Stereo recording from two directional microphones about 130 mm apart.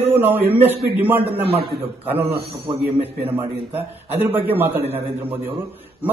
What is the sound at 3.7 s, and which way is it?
Speech, 15° right (ahead or behind).